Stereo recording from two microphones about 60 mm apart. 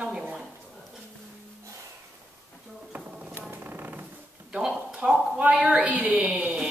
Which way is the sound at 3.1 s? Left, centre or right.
Centre.